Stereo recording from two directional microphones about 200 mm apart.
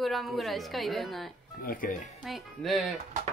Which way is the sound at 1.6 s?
45° left (ahead or behind).